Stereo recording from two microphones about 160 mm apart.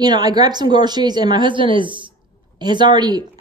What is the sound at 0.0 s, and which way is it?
Speech, 25° right (ahead or behind).